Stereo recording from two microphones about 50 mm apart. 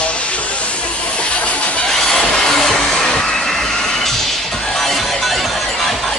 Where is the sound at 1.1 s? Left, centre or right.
Left.